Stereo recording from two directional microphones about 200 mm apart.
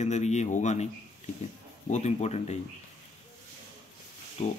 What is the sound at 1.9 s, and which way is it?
Speech, 35° left (ahead or behind).